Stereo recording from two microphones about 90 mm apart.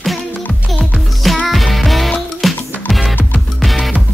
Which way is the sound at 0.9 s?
Centre (ahead or behind).